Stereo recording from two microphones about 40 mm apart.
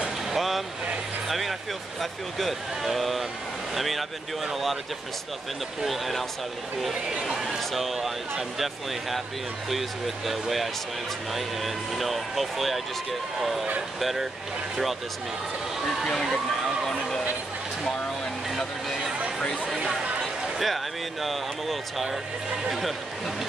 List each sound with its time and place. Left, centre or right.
0.3 s vehicle: centre
2.0 s speech: centre
5.9 s speech: centre
6.9 s speech: centre
7.2 s speech: centre
9.7 s speech: centre
16.1 s speech: centre
18.5 s vehicle: centre
20.0 s a sound: right
20.5 s speech: centre